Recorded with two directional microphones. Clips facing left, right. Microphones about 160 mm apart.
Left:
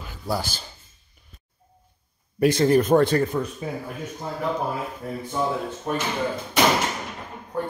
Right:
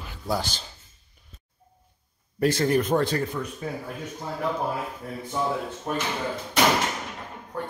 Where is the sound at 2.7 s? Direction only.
45° left (ahead or behind).